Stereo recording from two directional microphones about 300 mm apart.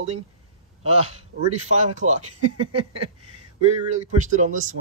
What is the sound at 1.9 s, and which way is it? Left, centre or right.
Speech, right.